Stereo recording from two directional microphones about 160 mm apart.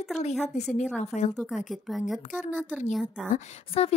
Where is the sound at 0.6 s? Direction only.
45° left (ahead or behind).